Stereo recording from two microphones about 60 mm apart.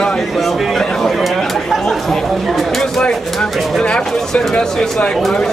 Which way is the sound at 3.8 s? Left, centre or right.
Centre.